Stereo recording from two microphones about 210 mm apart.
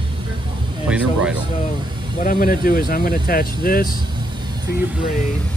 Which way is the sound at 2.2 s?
40° left (ahead or behind).